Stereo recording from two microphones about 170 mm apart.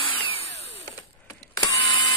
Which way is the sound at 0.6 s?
40° left (ahead or behind).